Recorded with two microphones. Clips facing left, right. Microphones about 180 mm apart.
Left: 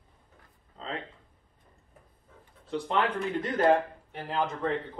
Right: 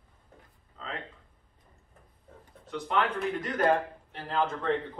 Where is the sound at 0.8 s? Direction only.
35° left (ahead or behind).